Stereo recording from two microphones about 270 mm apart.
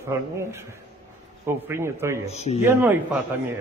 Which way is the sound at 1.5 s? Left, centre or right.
Centre.